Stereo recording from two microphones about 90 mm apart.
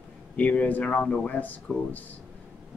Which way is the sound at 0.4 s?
15° left (ahead or behind).